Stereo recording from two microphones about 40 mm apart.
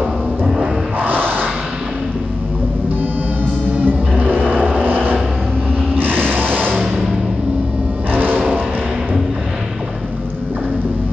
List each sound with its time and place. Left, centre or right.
0.9 s a sound: right
3.8 s music: right
6.1 s music: right
8.1 s music: right